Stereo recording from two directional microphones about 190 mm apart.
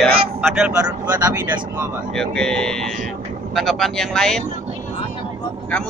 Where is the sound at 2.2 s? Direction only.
5° left (ahead or behind).